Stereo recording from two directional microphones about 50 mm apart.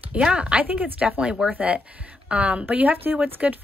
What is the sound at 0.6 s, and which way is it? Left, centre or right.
Speech, right.